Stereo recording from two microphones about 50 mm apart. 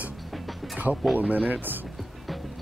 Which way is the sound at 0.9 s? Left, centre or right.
Centre.